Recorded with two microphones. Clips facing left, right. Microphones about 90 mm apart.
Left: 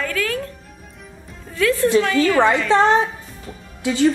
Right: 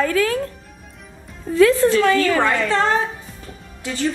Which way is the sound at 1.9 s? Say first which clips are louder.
Even; 20° left (ahead or behind).